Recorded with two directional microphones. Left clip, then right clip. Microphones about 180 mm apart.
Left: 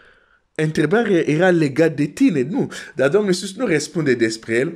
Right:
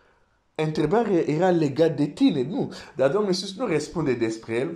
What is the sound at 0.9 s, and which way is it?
Speech, 35° left (ahead or behind).